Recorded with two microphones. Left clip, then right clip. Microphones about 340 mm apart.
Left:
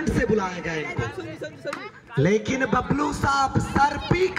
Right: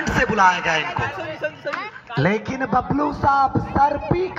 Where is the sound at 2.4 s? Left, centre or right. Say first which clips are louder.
Right 2 dB; centre.